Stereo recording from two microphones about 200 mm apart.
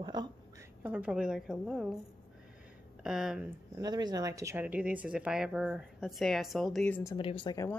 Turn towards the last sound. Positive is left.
turn(degrees=20)  # may be behind; listen again after turning